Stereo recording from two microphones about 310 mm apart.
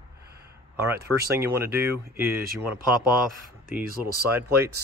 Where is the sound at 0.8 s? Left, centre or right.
Centre.